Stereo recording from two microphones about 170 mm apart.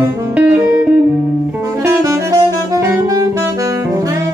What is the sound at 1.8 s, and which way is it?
Saxophone, 20° right (ahead or behind).